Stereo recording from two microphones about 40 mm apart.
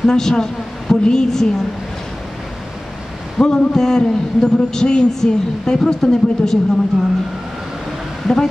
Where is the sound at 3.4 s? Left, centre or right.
Centre.